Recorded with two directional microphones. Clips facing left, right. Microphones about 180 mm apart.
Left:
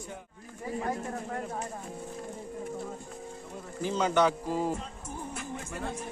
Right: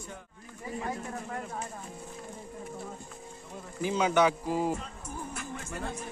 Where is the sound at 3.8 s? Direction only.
10° right (ahead or behind).